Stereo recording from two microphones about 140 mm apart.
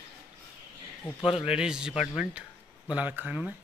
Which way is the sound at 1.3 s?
45° left (ahead or behind).